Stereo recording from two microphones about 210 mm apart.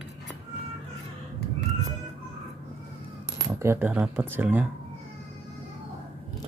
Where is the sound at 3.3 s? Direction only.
10° right (ahead or behind).